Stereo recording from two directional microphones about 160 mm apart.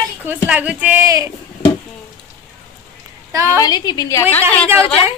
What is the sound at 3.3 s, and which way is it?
Speech, 20° right (ahead or behind).